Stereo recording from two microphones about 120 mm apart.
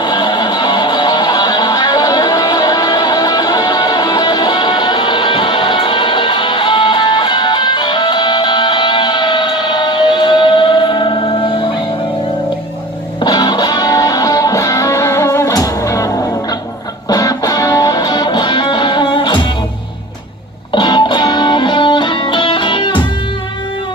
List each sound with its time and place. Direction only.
0.0 s music: 35° left (ahead or behind)
13.2 s music: 35° left (ahead or behind)
17.1 s music: 30° left (ahead or behind)
20.7 s music: 40° left (ahead or behind)